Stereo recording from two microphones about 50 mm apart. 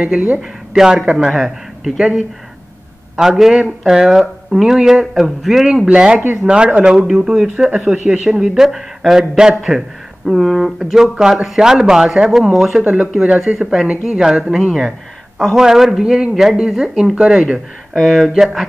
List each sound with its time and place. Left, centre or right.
0.0 s speech: right
0.4 s speech: centre
5.9 s speech: centre
7.7 s speech: right
8.1 s speech: centre
12.8 s speech: right
13.5 s speech: centre
17.9 s speech: centre